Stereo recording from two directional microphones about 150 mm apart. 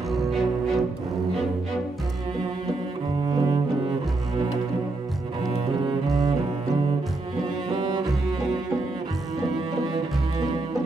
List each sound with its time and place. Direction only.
0.1 s music: centre (ahead or behind)
3.3 s double bass: 30° right (ahead or behind)
7.7 s cello: 35° right (ahead or behind)